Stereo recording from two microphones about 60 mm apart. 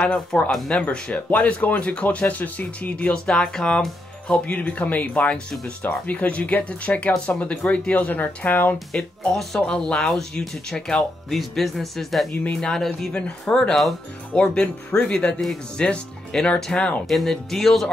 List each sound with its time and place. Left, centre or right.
0.0 s speech: centre
0.5 s speech: centre
1.0 s speech: left
7.9 s speech: left
9.3 s speech: centre
14.3 s speech: centre
17.1 s speech: centre